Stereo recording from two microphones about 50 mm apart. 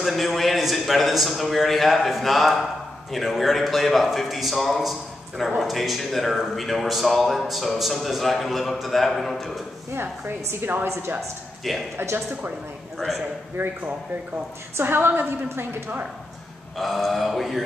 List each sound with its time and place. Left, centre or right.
0.0 s a man's voice: centre
9.9 s a woman's voice: right
12.0 s a woman's voice: right
13.6 s a woman's voice: right
14.8 s a woman's voice: right
16.7 s a man's voice: centre